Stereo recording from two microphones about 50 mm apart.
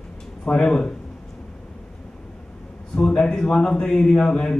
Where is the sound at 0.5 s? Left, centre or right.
Centre.